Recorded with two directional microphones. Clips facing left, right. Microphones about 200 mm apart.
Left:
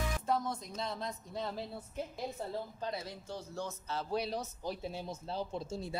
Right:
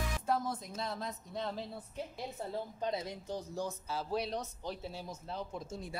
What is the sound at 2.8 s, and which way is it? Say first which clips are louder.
A man's voice: right 3 dB; 20° right (ahead or behind).